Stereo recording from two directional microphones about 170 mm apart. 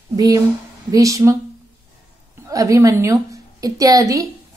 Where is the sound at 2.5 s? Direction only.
20° right (ahead or behind).